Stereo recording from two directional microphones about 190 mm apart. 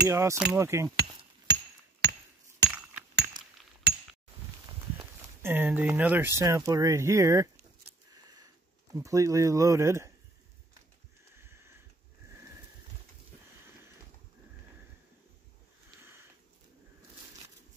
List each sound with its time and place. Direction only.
0.1 s speech: 15° right (ahead or behind)
1.5 s music: 60° right (ahead or behind)
3.9 s chink: 60° right (ahead or behind)
5.4 s speech: 10° right (ahead or behind)
8.1 s a sound: 20° right (ahead or behind)
8.9 s speech: 15° right (ahead or behind)
11.3 s a sound: 15° right (ahead or behind)